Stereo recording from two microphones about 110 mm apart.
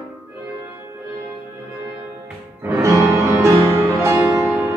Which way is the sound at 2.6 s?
25° right (ahead or behind).